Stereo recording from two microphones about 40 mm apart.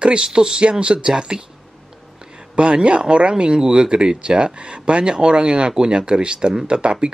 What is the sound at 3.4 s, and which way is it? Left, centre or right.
Speech, centre.